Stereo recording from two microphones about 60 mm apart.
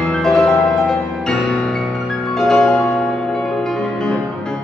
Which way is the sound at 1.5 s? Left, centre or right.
Centre.